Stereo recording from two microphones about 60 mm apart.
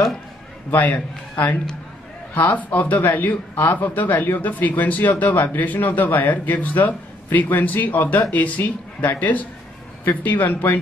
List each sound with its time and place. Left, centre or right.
0.7 s a man's voice: left
2.3 s a man's voice: left